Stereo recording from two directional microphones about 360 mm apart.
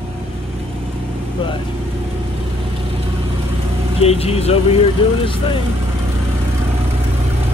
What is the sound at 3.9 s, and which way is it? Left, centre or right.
Speech, centre.